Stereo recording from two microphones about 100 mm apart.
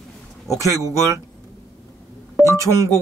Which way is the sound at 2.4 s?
30° right (ahead or behind).